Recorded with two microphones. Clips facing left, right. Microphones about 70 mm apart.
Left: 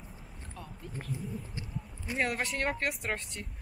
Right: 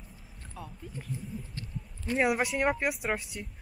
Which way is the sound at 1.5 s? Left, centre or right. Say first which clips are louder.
Left 1 dB; centre.